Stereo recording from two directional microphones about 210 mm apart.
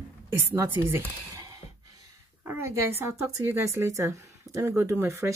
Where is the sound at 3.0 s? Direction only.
15° right (ahead or behind).